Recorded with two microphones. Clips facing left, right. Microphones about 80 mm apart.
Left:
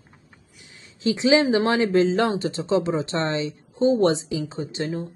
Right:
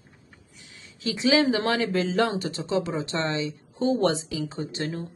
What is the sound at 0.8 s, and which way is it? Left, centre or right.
A woman's voice, left.